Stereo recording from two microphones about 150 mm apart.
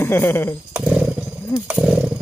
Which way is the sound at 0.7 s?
5° right (ahead or behind).